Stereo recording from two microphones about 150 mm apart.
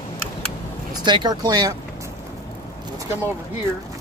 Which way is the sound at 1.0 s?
30° right (ahead or behind).